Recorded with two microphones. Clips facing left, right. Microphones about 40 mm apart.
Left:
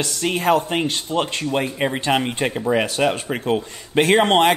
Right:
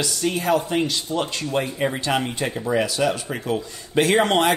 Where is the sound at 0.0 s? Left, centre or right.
Left.